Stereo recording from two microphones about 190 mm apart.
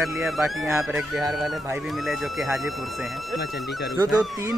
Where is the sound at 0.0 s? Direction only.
Centre (ahead or behind).